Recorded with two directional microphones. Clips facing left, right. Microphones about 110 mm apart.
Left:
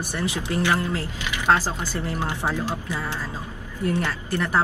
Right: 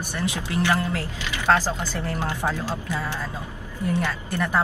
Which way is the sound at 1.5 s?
15° left (ahead or behind).